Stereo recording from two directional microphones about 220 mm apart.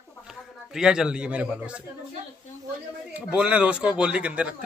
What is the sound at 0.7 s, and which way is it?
Speech, 5° right (ahead or behind).